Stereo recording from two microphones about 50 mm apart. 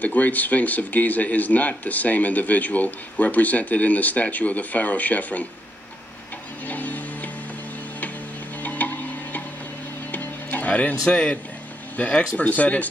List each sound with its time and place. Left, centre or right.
0.0 s speech: left
6.7 s music: left
8.6 s music: left
12.0 s speech: left